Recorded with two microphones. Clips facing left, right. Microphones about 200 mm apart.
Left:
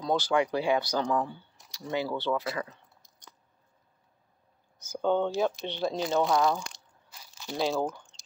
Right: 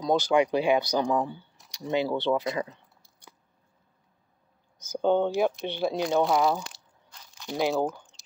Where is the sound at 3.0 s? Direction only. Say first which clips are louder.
Right 2 dB; 10° right (ahead or behind).